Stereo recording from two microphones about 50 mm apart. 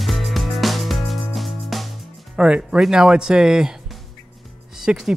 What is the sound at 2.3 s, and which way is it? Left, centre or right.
Speech, centre.